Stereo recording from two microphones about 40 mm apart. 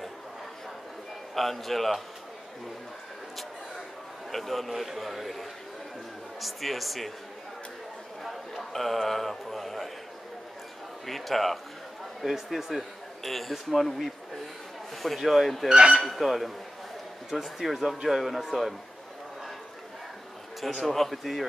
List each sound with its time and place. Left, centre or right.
1.3 s speech: centre
4.3 s speech: centre
8.2 s a sound: centre
11.1 s speech: centre
15.1 s speech: centre
15.7 s speech: right
16.0 s speech: centre
20.8 s speech: centre